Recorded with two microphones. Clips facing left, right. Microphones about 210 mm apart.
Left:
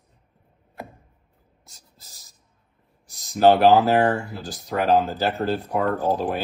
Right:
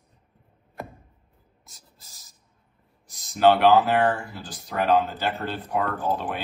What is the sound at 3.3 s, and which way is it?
Speech, 45° left (ahead or behind).